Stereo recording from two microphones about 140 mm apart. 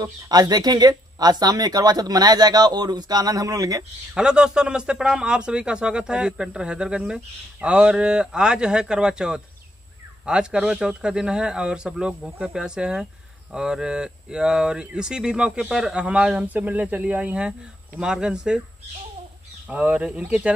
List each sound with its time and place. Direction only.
0.0 s speech: 30° right (ahead or behind)
4.1 s a man's voice: 5° right (ahead or behind)
19.7 s a man's voice: 10° right (ahead or behind)